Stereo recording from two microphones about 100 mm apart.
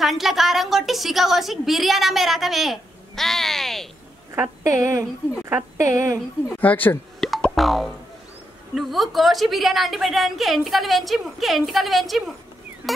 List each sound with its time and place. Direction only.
0.0 s a woman's voice: centre (ahead or behind)
4.4 s a woman's voice: 30° right (ahead or behind)
6.6 s speech: 15° left (ahead or behind)
7.2 s music: centre (ahead or behind)
8.7 s a woman's voice: centre (ahead or behind)